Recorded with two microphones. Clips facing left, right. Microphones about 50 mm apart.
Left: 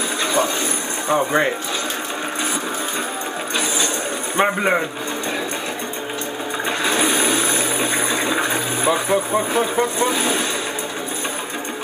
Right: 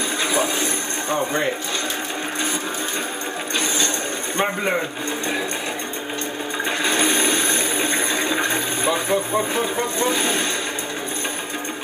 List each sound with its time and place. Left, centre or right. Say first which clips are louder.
0.2 s a sound: left 2 dB; centre
1.0 s speech: left 5 dB; centre
4.4 s a man's voice: left 4 dB; centre
6.8 s water: left 1 dB; centre